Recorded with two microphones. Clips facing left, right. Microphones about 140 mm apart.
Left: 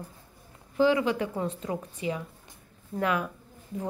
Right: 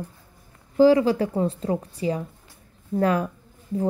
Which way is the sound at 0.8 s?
35° right (ahead or behind).